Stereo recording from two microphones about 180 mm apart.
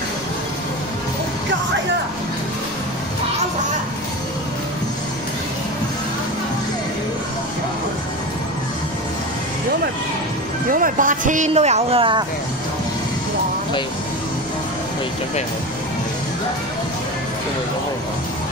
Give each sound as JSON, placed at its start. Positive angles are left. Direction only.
{"t": 10.7, "sound": "speech", "side_deg": -50}